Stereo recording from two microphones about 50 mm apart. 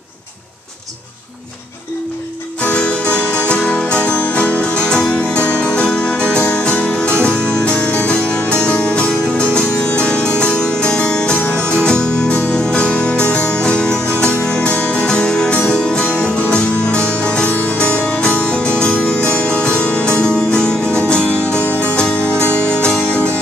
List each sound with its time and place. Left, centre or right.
2.6 s music: left
4.8 s music: centre
14.7 s music: left
15.0 s music: centre